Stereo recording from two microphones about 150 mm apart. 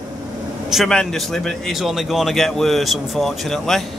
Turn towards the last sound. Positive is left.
turn(degrees=0)  # may be behind; listen again after turning